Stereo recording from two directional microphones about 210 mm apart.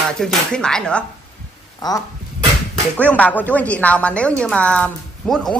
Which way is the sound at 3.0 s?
5° left (ahead or behind).